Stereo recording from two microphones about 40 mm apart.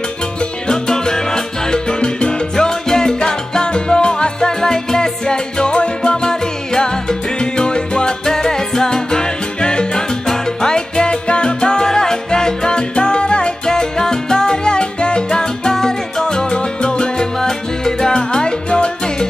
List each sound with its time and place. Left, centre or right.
0.4 s music: centre